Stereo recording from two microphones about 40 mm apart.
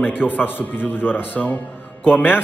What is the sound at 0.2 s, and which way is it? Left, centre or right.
A man's voice, left.